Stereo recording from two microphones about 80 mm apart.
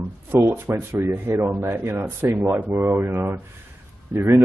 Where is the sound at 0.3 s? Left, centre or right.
Right.